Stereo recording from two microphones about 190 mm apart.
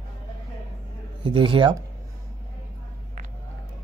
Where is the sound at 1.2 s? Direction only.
25° right (ahead or behind).